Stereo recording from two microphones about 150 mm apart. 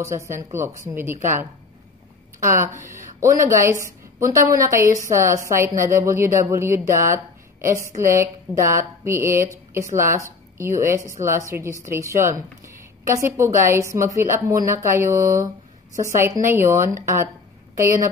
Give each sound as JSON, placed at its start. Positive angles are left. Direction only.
{"t": 0.0, "sound": "a woman's voice", "side_deg": -20}
{"t": 2.4, "sound": "a woman's voice", "side_deg": -15}